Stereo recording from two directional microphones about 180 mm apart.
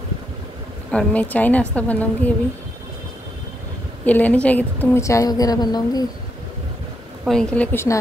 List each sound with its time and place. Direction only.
0.9 s a woman's voice: 5° left (ahead or behind)
4.0 s a woman's voice: 10° left (ahead or behind)
7.2 s a woman's voice: 5° left (ahead or behind)